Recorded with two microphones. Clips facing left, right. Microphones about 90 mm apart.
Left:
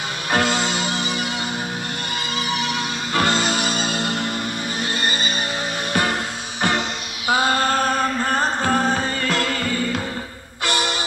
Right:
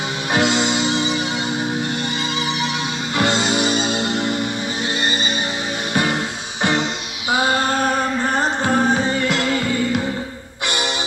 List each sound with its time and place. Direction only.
0.3 s music: 40° left (ahead or behind)
0.6 s music: 25° right (ahead or behind)
3.3 s music: 25° right (ahead or behind)